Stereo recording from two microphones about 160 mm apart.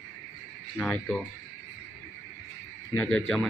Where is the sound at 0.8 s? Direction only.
5° left (ahead or behind).